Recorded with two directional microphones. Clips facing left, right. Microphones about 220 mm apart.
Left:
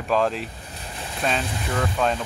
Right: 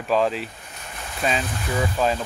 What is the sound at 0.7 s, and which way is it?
Boat, 35° left (ahead or behind).